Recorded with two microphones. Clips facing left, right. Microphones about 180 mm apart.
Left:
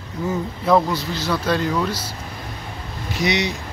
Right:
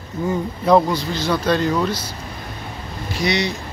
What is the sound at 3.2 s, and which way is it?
Speech, 15° left (ahead or behind).